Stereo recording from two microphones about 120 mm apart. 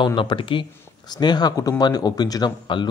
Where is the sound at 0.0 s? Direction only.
45° left (ahead or behind).